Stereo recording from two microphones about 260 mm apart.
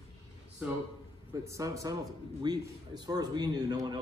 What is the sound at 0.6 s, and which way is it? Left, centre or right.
A man's voice, centre.